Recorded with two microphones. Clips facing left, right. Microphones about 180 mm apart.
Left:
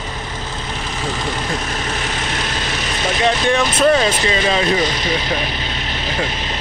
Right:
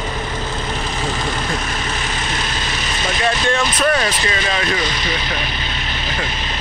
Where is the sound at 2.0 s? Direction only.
70° left (ahead or behind).